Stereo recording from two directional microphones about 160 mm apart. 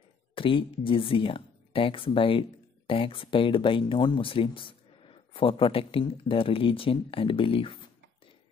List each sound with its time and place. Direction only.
0.3 s speech: 35° left (ahead or behind)